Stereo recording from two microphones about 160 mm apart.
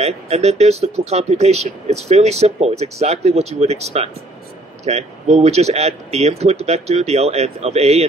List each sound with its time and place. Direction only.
0.0 s speech: 40° right (ahead or behind)